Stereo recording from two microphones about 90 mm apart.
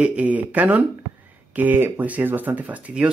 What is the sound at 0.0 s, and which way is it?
Speech, 15° right (ahead or behind).